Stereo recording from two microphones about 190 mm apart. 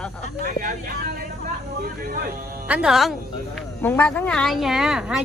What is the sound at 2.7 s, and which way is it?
A woman's voice, 5° right (ahead or behind).